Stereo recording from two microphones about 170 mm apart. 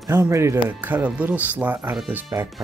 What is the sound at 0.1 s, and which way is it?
Speech, 15° right (ahead or behind).